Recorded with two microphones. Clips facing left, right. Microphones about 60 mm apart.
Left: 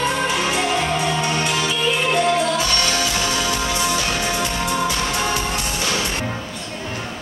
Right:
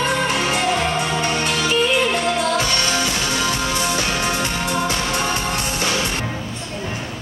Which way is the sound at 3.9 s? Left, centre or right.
Centre.